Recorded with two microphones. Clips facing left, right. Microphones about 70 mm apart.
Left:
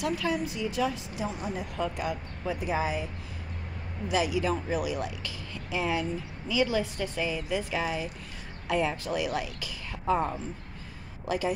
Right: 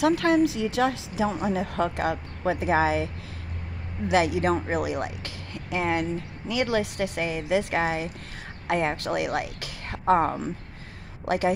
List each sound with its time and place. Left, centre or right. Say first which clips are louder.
0.0 s a woman's voice: right 9 dB; right
4.1 s a woman's voice: right 5 dB; right